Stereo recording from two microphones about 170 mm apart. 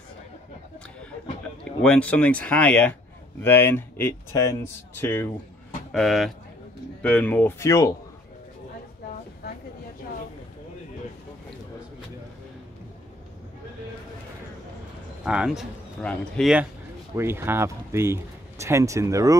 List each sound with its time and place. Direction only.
1.6 s speech: 5° left (ahead or behind)
5.9 s speech: centre (ahead or behind); by 7.9 s 20° left (ahead or behind)
15.2 s speech: 5° right (ahead or behind)
17.1 s speech: 15° right (ahead or behind)